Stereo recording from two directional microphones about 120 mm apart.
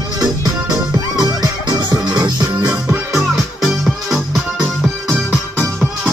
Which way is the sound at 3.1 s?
Centre (ahead or behind).